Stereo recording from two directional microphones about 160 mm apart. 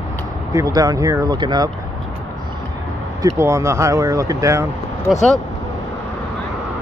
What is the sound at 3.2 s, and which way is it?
Speech, 20° right (ahead or behind).